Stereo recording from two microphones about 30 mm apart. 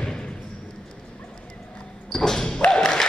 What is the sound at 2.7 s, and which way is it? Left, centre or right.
Music, centre.